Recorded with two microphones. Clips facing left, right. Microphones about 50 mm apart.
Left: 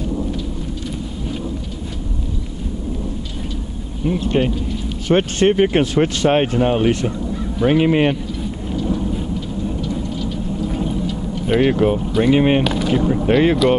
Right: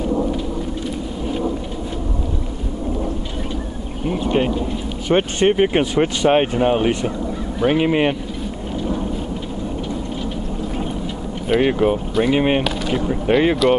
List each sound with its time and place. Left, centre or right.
4.1 s speech: centre
8.7 s thunder: centre
10.8 s a sound: centre
11.4 s speech: centre